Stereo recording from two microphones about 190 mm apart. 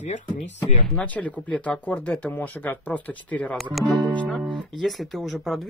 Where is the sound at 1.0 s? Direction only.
5° left (ahead or behind).